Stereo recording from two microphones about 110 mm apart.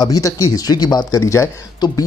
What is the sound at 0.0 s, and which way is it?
Speech, 35° left (ahead or behind).